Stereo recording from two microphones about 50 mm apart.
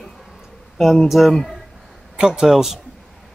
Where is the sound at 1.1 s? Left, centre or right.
Centre.